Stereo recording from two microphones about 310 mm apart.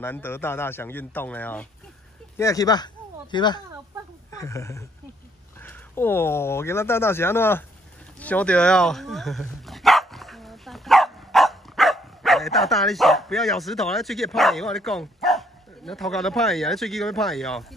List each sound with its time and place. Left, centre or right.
0.0 s speech: centre